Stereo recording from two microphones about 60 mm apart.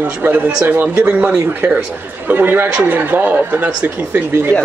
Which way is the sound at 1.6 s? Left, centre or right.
Right.